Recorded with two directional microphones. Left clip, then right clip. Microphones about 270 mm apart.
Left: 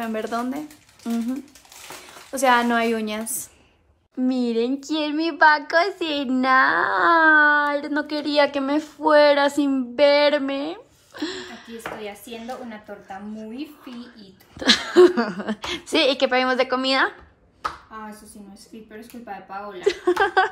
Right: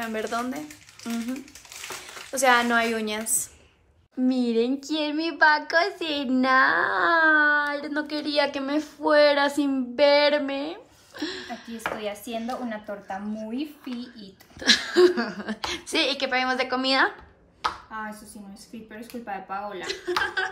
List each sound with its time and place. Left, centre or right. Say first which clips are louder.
0.0 s speech: left 2 dB; centre
4.2 s speech: left 1 dB; centre
18.5 s speech: left 1 dB; centre
19.8 s a woman's voice: left 9 dB; centre